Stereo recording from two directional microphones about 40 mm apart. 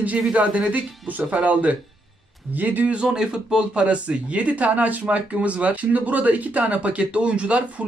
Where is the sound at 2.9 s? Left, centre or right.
Centre.